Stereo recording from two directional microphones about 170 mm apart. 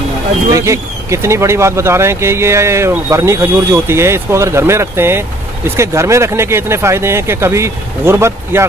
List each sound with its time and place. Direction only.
0.6 s speech: 15° right (ahead or behind)